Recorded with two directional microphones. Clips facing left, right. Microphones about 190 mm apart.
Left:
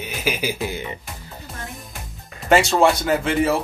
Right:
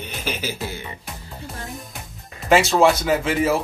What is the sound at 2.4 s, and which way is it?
Speech, centre (ahead or behind).